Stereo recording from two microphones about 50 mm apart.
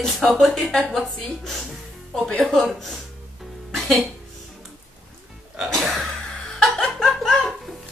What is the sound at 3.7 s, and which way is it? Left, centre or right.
Music, centre.